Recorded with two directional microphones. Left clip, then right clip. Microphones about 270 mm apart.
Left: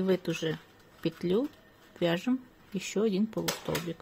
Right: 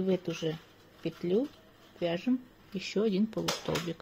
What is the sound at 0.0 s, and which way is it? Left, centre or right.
Speech, left.